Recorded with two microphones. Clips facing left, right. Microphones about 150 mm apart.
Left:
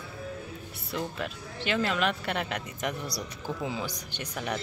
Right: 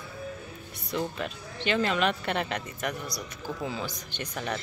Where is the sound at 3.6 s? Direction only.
15° left (ahead or behind).